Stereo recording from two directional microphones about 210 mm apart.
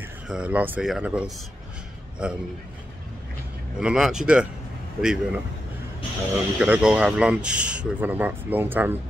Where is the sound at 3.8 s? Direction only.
5° right (ahead or behind).